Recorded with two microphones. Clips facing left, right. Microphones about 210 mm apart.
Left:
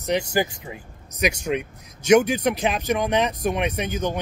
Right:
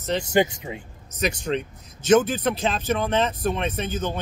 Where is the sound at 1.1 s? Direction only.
10° left (ahead or behind).